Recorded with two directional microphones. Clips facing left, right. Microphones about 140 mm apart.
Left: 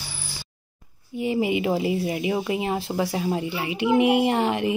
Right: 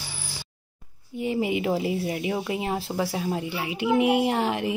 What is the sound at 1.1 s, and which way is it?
A woman's voice, 5° left (ahead or behind).